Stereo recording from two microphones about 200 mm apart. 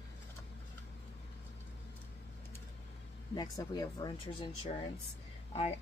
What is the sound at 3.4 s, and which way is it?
Speech, 20° left (ahead or behind).